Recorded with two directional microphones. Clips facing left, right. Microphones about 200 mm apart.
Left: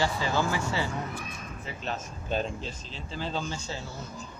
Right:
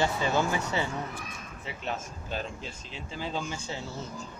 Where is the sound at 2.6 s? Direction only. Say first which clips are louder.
Left 2 dB; 15° right (ahead or behind).